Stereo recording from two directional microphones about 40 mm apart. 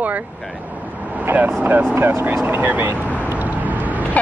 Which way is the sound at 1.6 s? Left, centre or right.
Right.